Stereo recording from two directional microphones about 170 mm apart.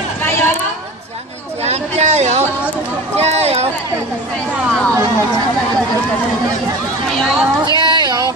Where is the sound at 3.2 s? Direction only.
40° right (ahead or behind).